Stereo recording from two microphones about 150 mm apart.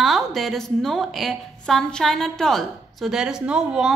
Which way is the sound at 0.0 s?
Centre (ahead or behind).